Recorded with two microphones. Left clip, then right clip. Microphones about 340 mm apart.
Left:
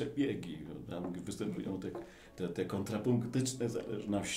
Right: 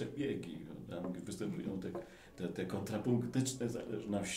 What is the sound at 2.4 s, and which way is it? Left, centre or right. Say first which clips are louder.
A man's voice: left 4 dB; left.